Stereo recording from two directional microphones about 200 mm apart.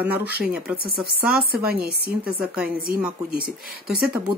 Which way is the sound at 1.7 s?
50° right (ahead or behind).